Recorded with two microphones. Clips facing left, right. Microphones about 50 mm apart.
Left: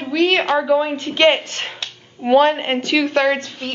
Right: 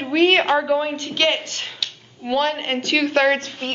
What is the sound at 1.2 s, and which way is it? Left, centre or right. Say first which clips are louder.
Speech: left 6 dB; left.